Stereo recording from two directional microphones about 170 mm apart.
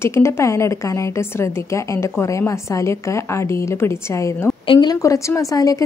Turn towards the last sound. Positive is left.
turn(degrees=20)  # may be behind; listen again after turning